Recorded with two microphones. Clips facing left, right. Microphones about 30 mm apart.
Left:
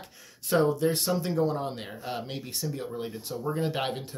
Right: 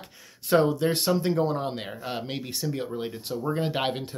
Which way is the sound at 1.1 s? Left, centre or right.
Right.